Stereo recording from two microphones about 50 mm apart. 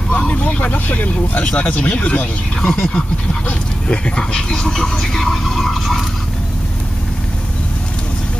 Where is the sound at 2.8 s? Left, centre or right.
Centre.